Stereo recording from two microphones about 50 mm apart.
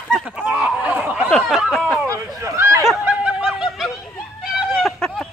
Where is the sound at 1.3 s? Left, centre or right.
Centre.